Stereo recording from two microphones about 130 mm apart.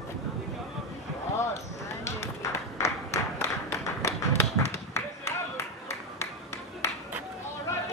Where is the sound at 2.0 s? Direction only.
20° left (ahead or behind).